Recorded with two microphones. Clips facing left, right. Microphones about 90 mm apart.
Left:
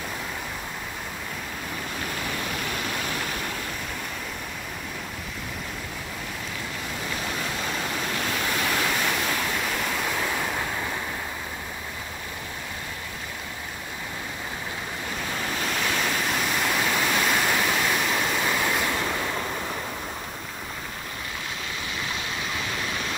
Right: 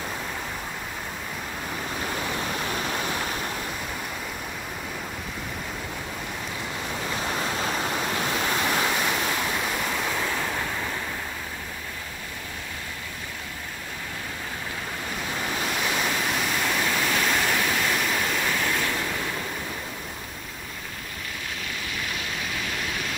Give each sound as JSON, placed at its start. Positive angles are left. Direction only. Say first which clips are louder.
{"t": 7.2, "sound": "waves", "louder": "right 4 dB", "side_deg": -25}
{"t": 8.9, "sound": "waves", "louder": "even", "side_deg": -10}
{"t": 10.2, "sound": "waves", "louder": "even", "side_deg": 10}
{"t": 15.8, "sound": "waterfall", "louder": "left 1 dB", "side_deg": -10}